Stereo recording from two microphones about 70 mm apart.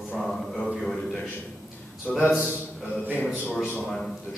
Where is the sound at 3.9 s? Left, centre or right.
Centre.